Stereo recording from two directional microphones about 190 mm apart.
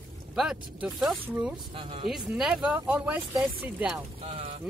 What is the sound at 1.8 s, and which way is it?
Speech, 30° right (ahead or behind).